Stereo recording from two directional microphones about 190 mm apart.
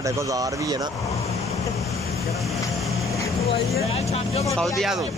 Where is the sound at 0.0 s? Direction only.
15° right (ahead or behind).